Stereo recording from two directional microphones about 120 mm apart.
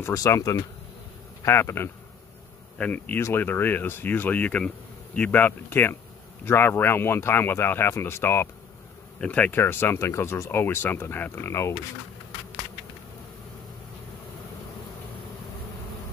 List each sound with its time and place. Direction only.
0.0 s speech: 25° left (ahead or behind)